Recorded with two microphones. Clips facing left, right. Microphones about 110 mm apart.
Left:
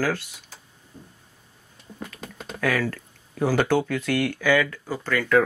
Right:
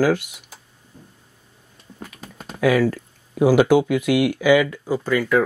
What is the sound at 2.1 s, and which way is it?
Speech, 15° right (ahead or behind).